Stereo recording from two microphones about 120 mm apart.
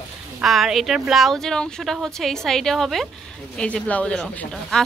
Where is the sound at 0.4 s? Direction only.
Centre (ahead or behind).